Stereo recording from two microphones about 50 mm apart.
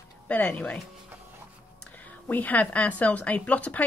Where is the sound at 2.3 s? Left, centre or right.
Left.